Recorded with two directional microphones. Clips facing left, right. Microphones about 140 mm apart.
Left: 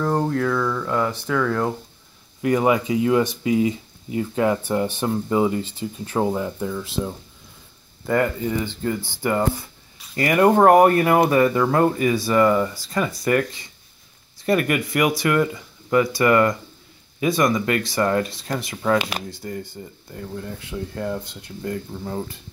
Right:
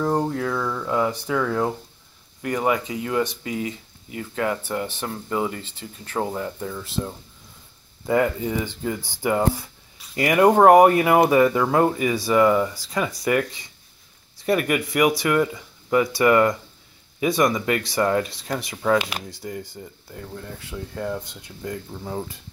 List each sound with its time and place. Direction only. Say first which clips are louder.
0.3 s speech: left 4 dB; 10° right (ahead or behind)
2.4 s speech: left 4 dB; 15° left (ahead or behind)
8.1 s speech: even; 10° right (ahead or behind)
21.2 s speech: left 3 dB; 15° right (ahead or behind)